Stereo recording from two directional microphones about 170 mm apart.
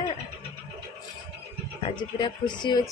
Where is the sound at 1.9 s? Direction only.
25° left (ahead or behind).